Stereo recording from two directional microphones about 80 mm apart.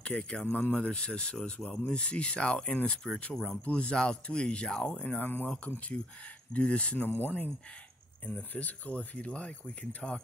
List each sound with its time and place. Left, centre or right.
0.0 s speech: centre
5.0 s speech: left
6.5 s speech: centre